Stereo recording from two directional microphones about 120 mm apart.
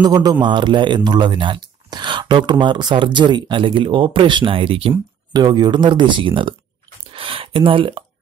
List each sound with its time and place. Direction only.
0.0 s a man's voice: 35° right (ahead or behind); by 4.9 s 50° right (ahead or behind)
5.3 s a man's voice: 35° right (ahead or behind)